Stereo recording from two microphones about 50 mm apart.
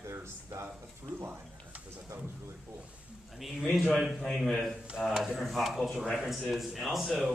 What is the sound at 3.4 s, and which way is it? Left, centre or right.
A man's voice, centre.